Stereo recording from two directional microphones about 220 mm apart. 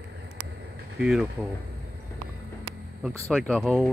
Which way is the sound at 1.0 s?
5° right (ahead or behind).